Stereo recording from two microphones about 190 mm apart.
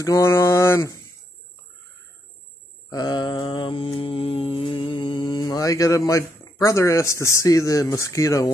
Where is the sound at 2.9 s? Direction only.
20° left (ahead or behind).